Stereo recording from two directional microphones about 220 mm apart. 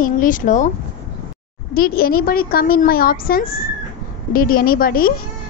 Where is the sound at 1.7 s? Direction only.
40° left (ahead or behind).